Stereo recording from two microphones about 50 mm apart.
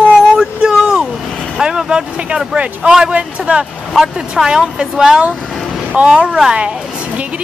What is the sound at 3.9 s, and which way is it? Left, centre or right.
Speech, centre.